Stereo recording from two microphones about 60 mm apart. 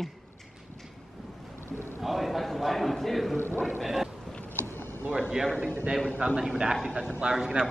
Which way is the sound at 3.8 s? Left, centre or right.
Centre.